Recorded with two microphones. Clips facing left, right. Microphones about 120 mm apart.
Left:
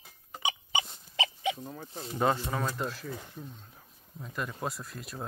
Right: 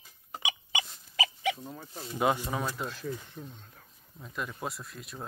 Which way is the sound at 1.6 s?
5° right (ahead or behind).